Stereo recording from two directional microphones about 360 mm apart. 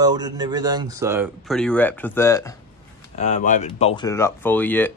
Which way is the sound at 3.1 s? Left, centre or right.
Centre.